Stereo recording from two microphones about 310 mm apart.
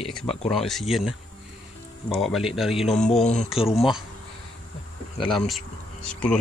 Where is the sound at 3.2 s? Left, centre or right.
Left.